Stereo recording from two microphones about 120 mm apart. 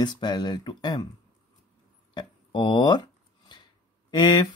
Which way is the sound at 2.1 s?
40° left (ahead or behind).